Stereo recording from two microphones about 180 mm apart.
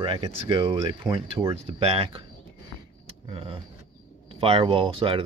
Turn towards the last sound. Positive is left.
turn(degrees=-30)  # may be behind; listen again after turning